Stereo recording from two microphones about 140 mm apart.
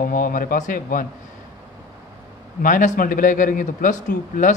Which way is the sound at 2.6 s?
65° left (ahead or behind).